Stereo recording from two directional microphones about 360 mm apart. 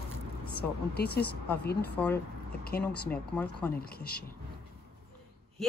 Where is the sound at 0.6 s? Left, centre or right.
Left.